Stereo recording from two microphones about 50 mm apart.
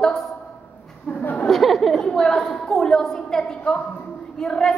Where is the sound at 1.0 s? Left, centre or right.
Left.